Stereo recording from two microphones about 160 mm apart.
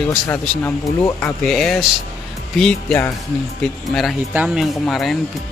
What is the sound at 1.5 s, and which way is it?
Speech, 5° left (ahead or behind).